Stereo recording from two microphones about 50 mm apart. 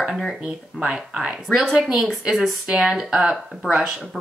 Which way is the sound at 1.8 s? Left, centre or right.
Centre.